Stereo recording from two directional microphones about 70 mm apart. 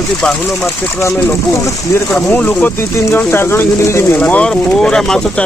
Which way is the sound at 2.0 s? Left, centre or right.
Left.